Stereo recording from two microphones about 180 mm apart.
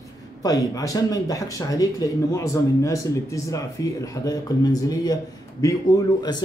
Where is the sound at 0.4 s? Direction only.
20° left (ahead or behind).